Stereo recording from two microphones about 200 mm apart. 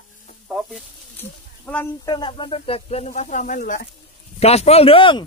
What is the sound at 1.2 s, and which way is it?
Speech, 10° left (ahead or behind).